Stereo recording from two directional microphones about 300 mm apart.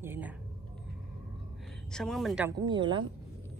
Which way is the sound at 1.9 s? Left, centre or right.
Centre.